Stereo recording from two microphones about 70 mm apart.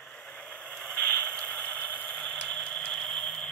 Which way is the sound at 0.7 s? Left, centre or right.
Centre.